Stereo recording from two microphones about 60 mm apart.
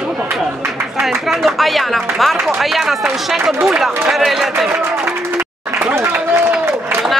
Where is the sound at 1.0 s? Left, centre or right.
Centre.